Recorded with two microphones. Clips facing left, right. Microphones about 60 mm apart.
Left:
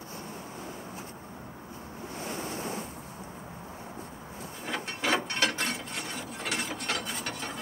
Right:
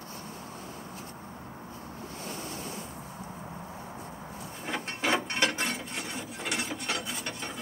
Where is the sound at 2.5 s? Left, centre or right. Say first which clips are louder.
Left 4 dB; left.